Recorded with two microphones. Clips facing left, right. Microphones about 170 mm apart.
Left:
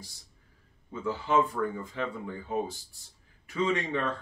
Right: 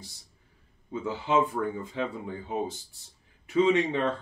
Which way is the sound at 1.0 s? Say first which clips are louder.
Even; 20° right (ahead or behind).